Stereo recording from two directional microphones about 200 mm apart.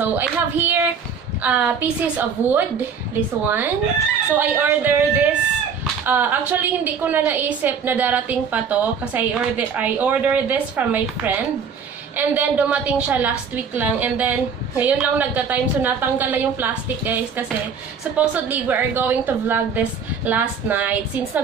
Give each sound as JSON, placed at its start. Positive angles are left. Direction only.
{"t": 0.0, "sound": "a woman's voice", "side_deg": -10}